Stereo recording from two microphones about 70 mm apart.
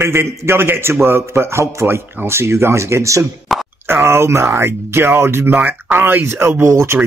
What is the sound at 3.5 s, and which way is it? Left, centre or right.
Plop, centre.